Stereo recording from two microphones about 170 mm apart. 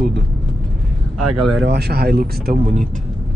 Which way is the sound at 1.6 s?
75° right (ahead or behind).